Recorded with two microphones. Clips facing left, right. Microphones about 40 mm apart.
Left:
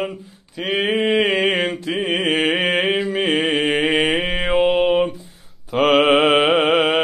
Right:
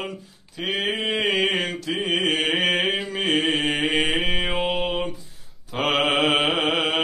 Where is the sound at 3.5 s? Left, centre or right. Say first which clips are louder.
Left 4 dB; left.